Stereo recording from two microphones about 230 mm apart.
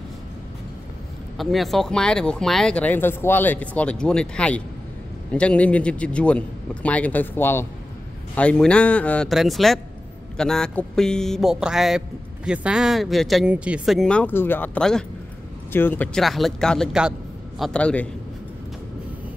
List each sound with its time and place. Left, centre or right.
1.4 s speech: centre